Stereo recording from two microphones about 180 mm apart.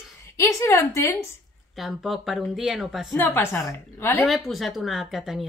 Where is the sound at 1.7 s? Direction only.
Centre (ahead or behind).